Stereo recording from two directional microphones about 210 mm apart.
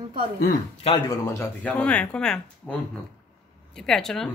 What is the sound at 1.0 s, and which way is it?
Speech, 10° left (ahead or behind).